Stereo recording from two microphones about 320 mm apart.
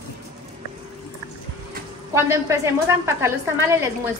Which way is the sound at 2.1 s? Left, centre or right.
Centre.